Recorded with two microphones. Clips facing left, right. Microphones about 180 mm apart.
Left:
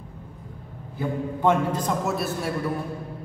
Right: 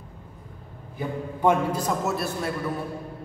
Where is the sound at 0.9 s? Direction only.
10° right (ahead or behind).